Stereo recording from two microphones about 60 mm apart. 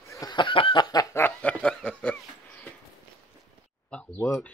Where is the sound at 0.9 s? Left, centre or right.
Left.